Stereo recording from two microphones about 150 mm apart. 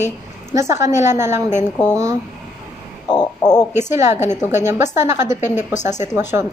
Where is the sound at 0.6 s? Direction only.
20° right (ahead or behind).